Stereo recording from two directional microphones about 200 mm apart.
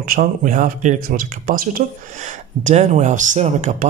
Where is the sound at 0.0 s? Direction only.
45° right (ahead or behind).